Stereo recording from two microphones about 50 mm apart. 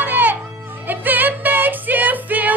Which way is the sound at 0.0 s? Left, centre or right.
Right.